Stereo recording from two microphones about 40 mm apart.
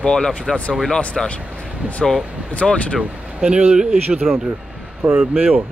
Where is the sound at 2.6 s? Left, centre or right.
Centre.